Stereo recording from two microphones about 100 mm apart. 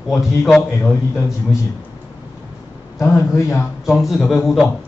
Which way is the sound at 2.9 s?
30° left (ahead or behind).